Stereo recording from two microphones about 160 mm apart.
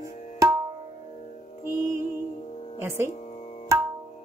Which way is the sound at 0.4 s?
20° right (ahead or behind).